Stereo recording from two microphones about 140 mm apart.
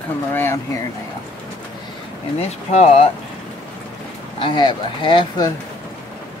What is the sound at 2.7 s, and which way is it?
Speech, 55° left (ahead or behind).